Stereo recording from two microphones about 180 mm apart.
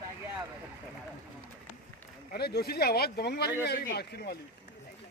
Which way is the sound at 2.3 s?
60° left (ahead or behind).